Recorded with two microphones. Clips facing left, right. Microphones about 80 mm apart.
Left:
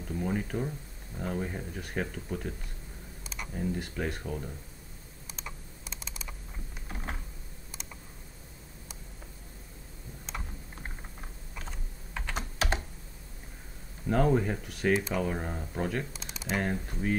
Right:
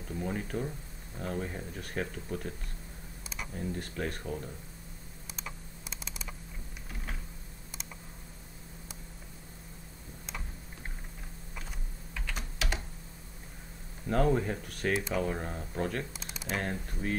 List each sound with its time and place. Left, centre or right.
0.1 s speech: centre
3.5 s speech: centre
5.3 s computer keyboard: centre
11.6 s typing: left
14.0 s speech: centre